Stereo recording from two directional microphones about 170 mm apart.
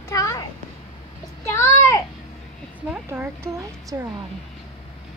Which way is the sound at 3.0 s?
15° right (ahead or behind).